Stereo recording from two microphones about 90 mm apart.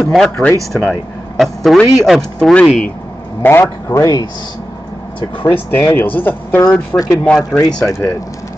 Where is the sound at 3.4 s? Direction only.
25° left (ahead or behind).